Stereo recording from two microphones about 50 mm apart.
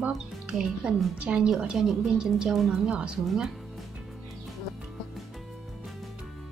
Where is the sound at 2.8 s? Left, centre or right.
Centre.